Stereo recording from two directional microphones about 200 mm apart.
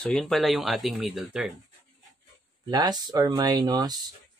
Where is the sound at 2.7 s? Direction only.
20° right (ahead or behind).